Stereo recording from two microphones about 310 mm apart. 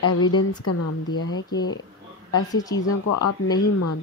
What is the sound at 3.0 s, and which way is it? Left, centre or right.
Speech, left.